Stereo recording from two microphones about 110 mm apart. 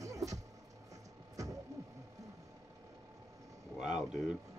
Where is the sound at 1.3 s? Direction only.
30° right (ahead or behind).